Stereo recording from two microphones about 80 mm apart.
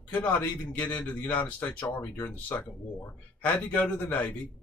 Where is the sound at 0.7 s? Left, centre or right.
Centre.